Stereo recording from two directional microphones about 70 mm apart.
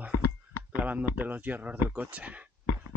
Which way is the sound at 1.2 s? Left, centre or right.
Right.